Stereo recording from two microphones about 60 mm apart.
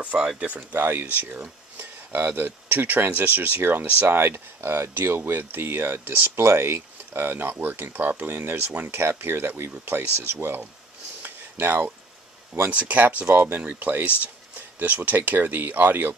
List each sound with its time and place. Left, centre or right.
0.0 s speech: right
0.7 s speech: right
11.2 s a sound: right
12.6 s speech: right